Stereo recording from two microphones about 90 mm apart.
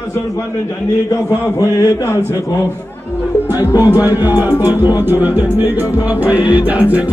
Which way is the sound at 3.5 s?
45° left (ahead or behind).